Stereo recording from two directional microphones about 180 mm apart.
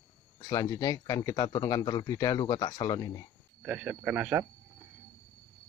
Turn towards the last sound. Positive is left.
turn(degrees=-10)  # may be behind; listen again after turning